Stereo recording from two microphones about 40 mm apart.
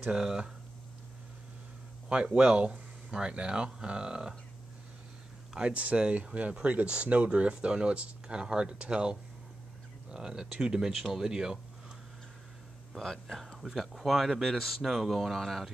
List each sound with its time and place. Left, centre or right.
0.1 s speech: right
2.0 s speech: right
5.6 s speech: right
12.9 s speech: centre
13.6 s speech: centre